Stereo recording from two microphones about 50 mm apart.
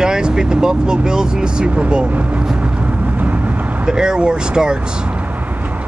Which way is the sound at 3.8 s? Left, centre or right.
Centre.